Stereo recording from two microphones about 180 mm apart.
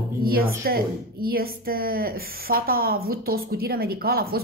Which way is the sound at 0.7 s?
55° right (ahead or behind).